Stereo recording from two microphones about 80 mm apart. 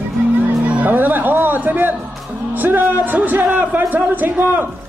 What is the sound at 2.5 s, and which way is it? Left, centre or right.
A man's voice, right.